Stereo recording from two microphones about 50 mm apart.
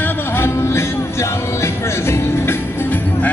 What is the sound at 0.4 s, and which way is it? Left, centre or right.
Music, left.